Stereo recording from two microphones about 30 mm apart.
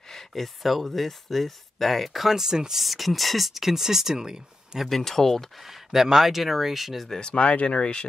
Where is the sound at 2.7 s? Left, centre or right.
Centre; by 4.8 s right.